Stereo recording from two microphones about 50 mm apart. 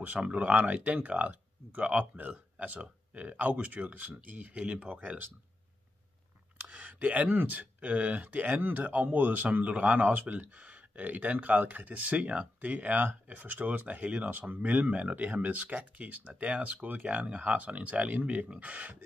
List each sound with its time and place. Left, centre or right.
0.0 s speech: right
6.6 s speech: right